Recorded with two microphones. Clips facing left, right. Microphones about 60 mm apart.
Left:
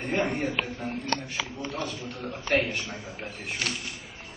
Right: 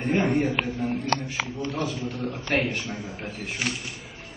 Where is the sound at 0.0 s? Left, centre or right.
Centre.